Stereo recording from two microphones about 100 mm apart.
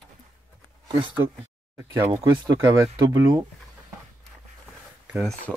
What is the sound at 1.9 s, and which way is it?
Speech, 35° right (ahead or behind).